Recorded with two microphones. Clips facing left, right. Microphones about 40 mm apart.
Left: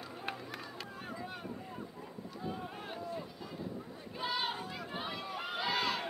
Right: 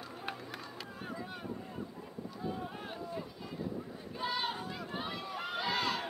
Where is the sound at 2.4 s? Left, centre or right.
Centre.